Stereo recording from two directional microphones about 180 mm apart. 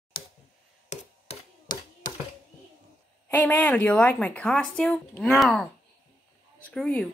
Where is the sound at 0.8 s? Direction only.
35° left (ahead or behind).